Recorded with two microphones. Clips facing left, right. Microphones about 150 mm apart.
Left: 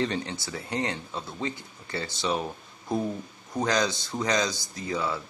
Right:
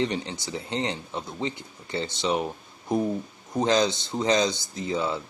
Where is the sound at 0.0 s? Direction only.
20° right (ahead or behind).